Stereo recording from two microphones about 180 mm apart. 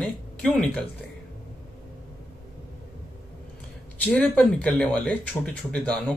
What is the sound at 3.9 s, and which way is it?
Speech, 10° left (ahead or behind).